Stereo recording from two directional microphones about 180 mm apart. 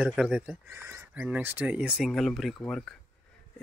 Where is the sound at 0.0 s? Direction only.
5° right (ahead or behind).